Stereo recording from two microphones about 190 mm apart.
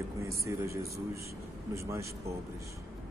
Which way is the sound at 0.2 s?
15° right (ahead or behind).